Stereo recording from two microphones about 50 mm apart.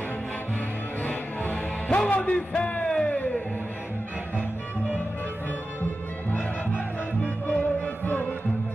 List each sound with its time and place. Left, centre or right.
1.0 s music: left
7.6 s music: left